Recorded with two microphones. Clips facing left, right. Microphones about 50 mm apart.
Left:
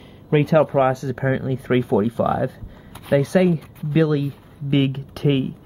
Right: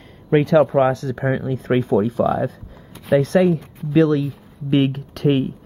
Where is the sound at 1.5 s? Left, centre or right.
Centre.